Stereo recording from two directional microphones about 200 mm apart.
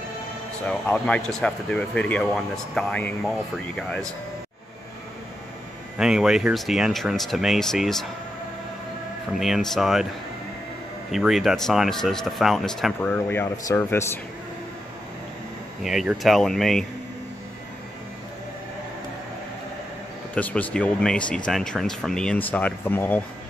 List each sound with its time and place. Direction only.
0.9 s speech: 5° left (ahead or behind)
5.9 s speech: 5° right (ahead or behind)
9.4 s speech: centre (ahead or behind)
11.1 s speech: centre (ahead or behind)
15.8 s speech: centre (ahead or behind)
20.3 s speech: 5° left (ahead or behind)